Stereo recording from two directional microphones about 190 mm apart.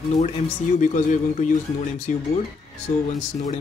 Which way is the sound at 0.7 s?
45° left (ahead or behind).